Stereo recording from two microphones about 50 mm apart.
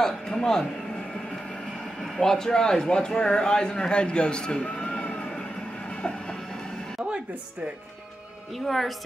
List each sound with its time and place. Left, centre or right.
0.0 s a man's voice: centre
2.1 s a man's voice: centre
4.7 s vehicle: left
8.5 s a woman's voice: centre